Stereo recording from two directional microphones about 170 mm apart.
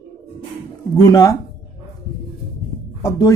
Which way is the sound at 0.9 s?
20° left (ahead or behind).